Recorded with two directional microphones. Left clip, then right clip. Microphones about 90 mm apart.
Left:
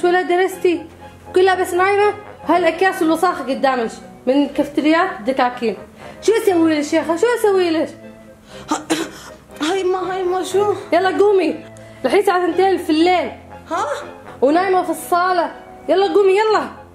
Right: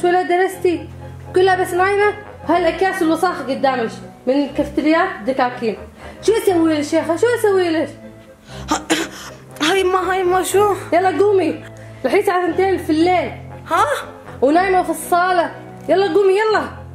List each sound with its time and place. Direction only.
0.0 s a woman's voice: 15° left (ahead or behind)
6.2 s a woman's voice: 5° left (ahead or behind)
8.6 s a sound: centre (ahead or behind)
9.6 s a woman's voice: 10° right (ahead or behind)
9.8 s speech: 35° right (ahead or behind)
10.9 s a woman's voice: 10° left (ahead or behind)
13.7 s speech: 30° right (ahead or behind)
14.4 s a woman's voice: centre (ahead or behind)